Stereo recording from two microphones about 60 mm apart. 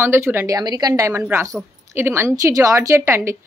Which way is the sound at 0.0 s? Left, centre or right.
Right.